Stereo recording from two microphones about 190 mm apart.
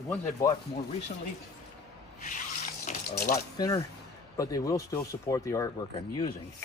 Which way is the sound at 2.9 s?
40° left (ahead or behind).